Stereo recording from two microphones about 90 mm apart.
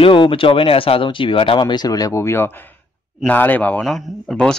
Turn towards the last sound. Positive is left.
turn(degrees=5)  # may be behind; listen again after turning